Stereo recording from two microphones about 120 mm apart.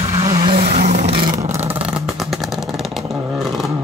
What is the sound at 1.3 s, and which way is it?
Vehicle, 25° right (ahead or behind).